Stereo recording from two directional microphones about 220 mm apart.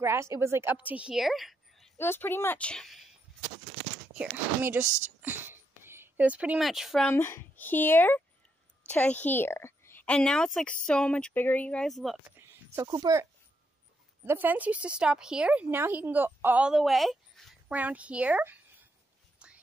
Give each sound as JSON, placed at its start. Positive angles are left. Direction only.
{"t": 0.0, "sound": "a woman's voice", "side_deg": -10}
{"t": 4.1, "sound": "a woman's voice", "side_deg": -10}
{"t": 12.4, "sound": "a sound", "side_deg": -15}
{"t": 14.2, "sound": "a woman's voice", "side_deg": -10}